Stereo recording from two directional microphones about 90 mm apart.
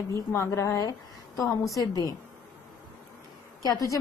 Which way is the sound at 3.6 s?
40° left (ahead or behind).